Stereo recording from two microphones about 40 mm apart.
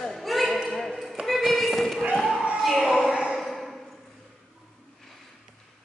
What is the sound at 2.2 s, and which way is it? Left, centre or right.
Basketball bounce, centre.